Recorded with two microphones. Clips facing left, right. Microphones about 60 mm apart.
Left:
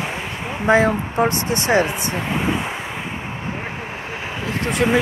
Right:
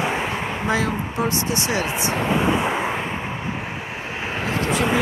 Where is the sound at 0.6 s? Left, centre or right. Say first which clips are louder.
Left 9 dB; left.